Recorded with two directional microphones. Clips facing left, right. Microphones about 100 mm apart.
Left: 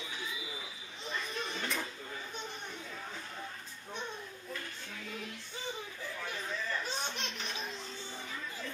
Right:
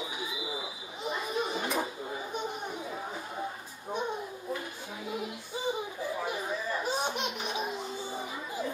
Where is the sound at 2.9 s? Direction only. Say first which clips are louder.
Right 7 dB; 25° right (ahead or behind).